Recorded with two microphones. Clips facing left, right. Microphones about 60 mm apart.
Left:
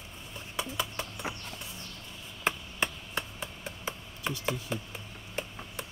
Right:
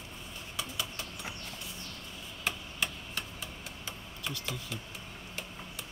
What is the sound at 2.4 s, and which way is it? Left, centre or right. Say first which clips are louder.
Chop: left 4 dB; left.